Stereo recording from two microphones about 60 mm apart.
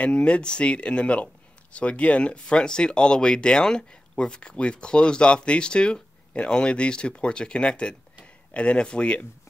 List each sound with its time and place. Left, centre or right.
0.0 s speech: centre